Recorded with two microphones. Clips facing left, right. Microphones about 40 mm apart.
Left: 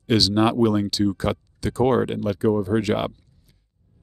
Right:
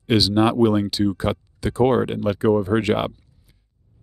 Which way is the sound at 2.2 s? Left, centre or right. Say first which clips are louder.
Right 2 dB; right.